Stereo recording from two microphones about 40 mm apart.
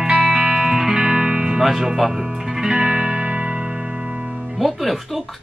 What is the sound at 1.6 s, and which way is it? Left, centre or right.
Music, centre.